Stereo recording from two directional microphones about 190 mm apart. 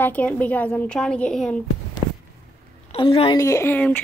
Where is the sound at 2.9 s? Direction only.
30° left (ahead or behind).